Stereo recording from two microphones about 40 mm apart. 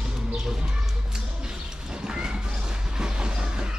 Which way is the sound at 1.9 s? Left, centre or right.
Right.